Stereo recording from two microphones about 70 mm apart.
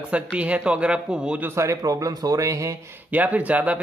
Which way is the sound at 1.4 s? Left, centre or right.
Right.